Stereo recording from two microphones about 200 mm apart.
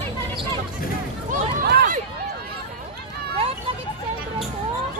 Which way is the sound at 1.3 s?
45° right (ahead or behind).